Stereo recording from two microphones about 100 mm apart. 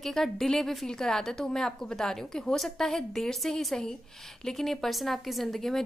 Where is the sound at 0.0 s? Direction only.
5° left (ahead or behind).